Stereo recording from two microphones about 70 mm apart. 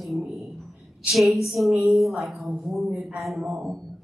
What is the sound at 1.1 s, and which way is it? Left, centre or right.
Speech, centre.